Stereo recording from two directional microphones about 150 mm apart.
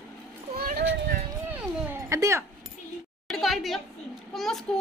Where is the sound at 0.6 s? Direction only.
85° right.